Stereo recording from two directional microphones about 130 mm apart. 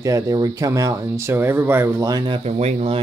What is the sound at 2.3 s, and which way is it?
Speech, 55° right (ahead or behind).